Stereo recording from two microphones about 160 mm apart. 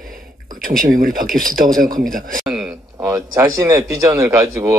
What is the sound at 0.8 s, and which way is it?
Speech, 60° right (ahead or behind).